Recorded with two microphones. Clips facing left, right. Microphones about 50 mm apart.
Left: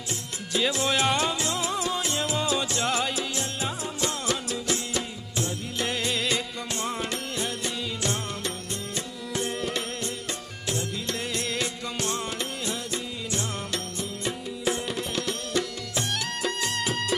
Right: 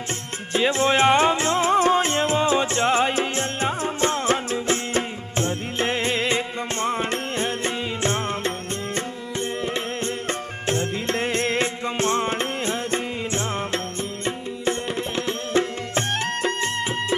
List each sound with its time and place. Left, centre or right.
0.5 s music: right